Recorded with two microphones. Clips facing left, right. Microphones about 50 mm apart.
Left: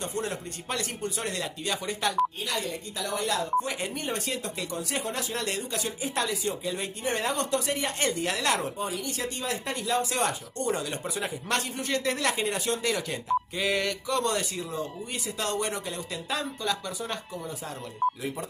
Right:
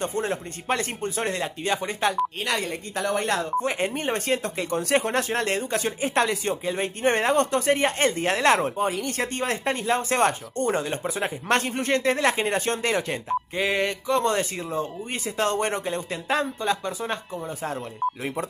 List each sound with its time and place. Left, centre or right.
0.0 s speech: right
2.4 s speech: right
18.0 s speech: centre